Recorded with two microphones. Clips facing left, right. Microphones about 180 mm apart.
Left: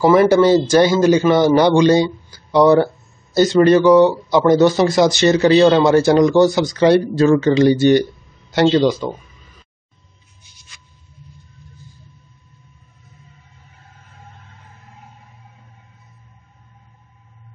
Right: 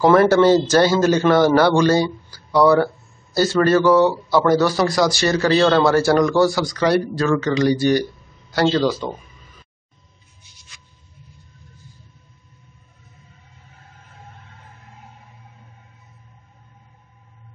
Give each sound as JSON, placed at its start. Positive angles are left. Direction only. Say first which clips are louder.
{"t": 0.0, "sound": "a man's voice", "louder": "left 1 dB", "side_deg": 10}